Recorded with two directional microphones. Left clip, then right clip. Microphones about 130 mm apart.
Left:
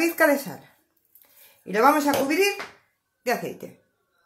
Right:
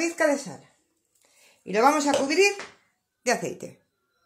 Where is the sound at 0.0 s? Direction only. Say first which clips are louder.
Left 3 dB; 5° right (ahead or behind).